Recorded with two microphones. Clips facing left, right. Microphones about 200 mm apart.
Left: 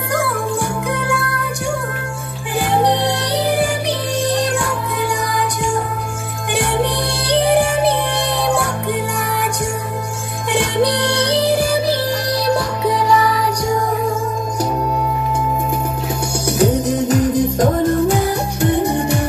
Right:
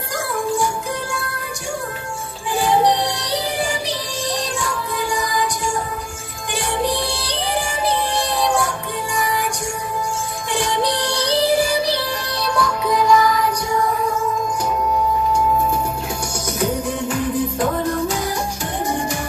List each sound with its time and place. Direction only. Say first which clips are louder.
0.1 s music: left 2 dB; 60° left (ahead or behind)
2.5 s music: even; 60° left (ahead or behind)
6.5 s music: left 3 dB; 60° left (ahead or behind)
10.5 s music: left 5 dB; 60° left (ahead or behind)
12.4 s music: left 1 dB; 35° left (ahead or behind)
16.8 s music: left 6 dB; 40° left (ahead or behind)
18.0 s music: left 6 dB; 60° left (ahead or behind)